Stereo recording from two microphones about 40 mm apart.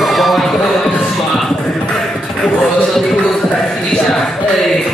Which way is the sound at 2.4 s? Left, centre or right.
Left.